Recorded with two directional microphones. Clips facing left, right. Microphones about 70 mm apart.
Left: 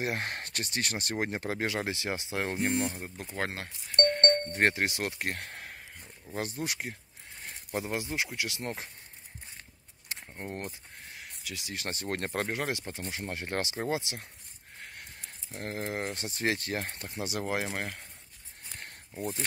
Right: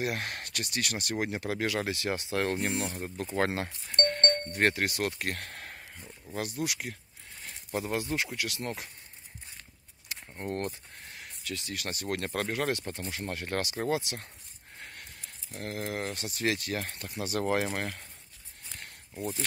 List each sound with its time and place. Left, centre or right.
0.0 s speech: left
3.0 s speech: centre
4.5 s speech: left
5.4 s a sound: centre
5.7 s a sound: centre
6.3 s speech: left
10.2 s speech: centre
11.1 s a sound: centre
11.7 s speech: left
15.5 s speech: left
17.3 s speech: centre
18.7 s a sound: left